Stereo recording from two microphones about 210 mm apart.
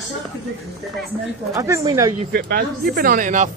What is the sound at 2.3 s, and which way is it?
Speech, 45° right (ahead or behind).